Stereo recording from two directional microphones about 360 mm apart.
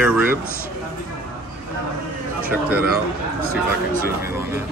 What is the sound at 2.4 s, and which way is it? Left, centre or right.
Speech, centre.